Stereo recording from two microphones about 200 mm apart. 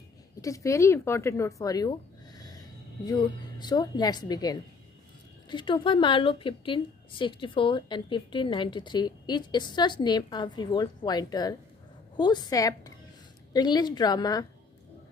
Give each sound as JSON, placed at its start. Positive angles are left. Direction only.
{"t": 0.4, "sound": "a woman's voice", "side_deg": 15}